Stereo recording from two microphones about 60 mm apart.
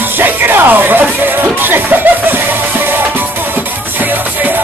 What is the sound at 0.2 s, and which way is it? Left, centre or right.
Music, right.